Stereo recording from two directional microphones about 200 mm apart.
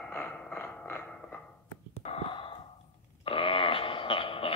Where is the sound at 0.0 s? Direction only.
10° left (ahead or behind).